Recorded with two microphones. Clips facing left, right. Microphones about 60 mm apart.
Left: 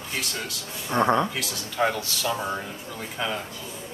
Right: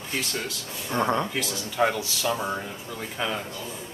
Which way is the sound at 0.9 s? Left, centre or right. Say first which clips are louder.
Left 3 dB; left.